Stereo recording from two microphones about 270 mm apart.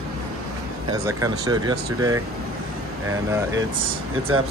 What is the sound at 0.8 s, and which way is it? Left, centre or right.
Speech, centre.